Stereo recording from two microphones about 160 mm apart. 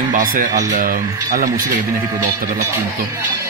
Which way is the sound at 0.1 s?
60° right (ahead or behind).